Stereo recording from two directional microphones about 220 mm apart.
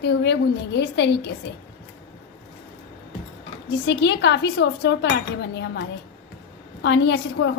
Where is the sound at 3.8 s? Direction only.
50° left (ahead or behind).